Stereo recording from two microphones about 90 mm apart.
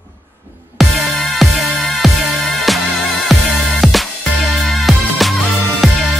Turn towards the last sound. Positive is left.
turn(degrees=0)  # may be behind; listen again after turning